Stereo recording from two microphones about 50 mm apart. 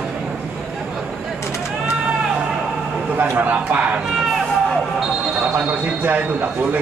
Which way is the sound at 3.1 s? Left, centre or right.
Right.